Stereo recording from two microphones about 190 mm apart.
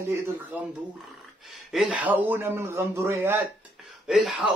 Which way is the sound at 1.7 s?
5° right (ahead or behind).